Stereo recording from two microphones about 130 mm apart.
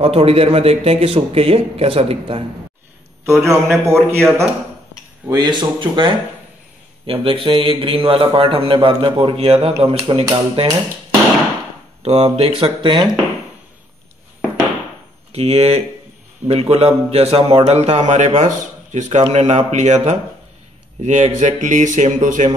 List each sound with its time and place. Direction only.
0.0 s a man's voice: 50° right (ahead or behind)
3.3 s a man's voice: 20° right (ahead or behind)
5.3 s a man's voice: 35° right (ahead or behind)
12.0 s a man's voice: 55° right (ahead or behind); by 13.1 s 35° right (ahead or behind)
15.3 s a man's voice: 50° right (ahead or behind); by 22.5 s 75° right (ahead or behind)